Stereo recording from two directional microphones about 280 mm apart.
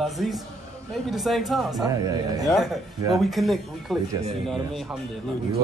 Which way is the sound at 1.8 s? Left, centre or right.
Centre.